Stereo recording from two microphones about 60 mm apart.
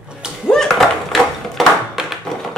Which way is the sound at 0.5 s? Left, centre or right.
Centre.